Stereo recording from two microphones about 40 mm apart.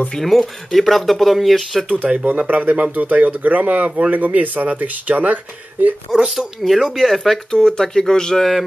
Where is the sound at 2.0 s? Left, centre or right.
Right.